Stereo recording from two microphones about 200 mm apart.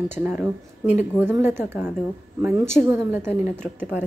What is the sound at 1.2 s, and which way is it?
Speech, 10° right (ahead or behind).